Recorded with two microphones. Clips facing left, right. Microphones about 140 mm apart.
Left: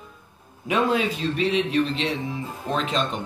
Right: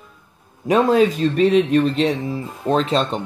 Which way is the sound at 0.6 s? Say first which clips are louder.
Right 7 dB; 40° right (ahead or behind).